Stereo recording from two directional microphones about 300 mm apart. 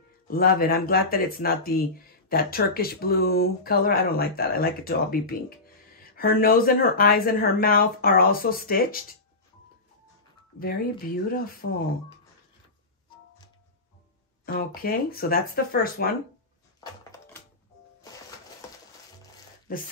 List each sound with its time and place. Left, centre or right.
0.3 s speech: left
11.2 s speech: left
14.4 s speech: left
19.7 s speech: left